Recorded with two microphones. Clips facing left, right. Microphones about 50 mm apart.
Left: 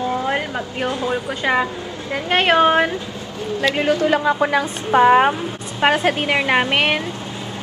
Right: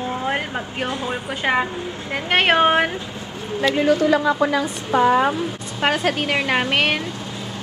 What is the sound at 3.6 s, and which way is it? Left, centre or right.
A woman's voice, left.